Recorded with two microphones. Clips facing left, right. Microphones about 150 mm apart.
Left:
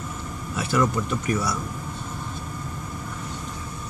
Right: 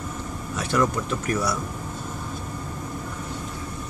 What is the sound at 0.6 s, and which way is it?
Speech, centre (ahead or behind).